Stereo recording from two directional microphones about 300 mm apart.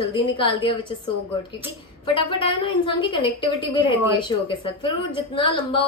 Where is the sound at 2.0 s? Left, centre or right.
Centre.